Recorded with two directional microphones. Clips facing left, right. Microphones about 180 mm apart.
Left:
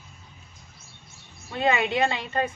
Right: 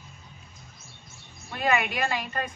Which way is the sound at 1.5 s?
25° left (ahead or behind).